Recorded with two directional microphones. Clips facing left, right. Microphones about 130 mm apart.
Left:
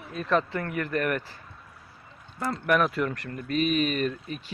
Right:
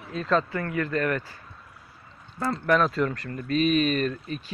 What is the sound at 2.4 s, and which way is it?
Speech, 15° left (ahead or behind).